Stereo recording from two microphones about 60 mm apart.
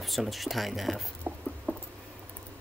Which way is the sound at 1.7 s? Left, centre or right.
Left.